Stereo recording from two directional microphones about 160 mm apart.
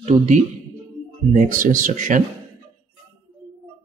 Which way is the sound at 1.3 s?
55° right (ahead or behind).